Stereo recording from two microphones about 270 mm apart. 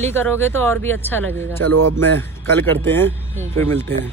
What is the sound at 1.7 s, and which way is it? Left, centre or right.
Speech, right.